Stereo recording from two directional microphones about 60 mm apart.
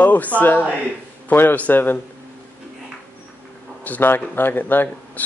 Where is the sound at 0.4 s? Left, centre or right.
Left.